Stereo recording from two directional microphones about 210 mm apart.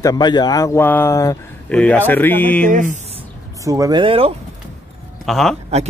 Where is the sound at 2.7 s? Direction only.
40° right (ahead or behind).